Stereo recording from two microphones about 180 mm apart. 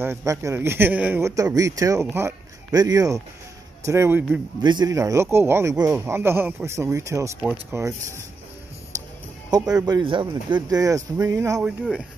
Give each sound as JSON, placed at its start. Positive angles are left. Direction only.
{"t": 0.0, "sound": "speech", "side_deg": -15}
{"t": 4.6, "sound": "speech", "side_deg": -25}
{"t": 8.9, "sound": "music", "side_deg": -20}
{"t": 9.5, "sound": "speech", "side_deg": -20}